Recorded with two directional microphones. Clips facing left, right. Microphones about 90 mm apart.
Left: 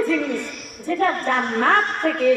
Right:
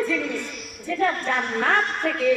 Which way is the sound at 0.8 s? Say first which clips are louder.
Left 3 dB; 40° left (ahead or behind).